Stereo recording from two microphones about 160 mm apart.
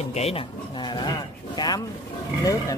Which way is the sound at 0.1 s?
40° left (ahead or behind).